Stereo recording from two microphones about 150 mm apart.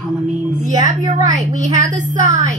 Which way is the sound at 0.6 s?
50° right (ahead or behind).